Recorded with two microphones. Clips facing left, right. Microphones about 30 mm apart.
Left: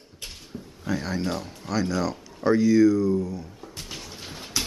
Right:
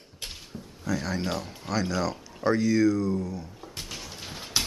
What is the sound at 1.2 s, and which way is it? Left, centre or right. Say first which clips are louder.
Speech: left 2 dB; centre.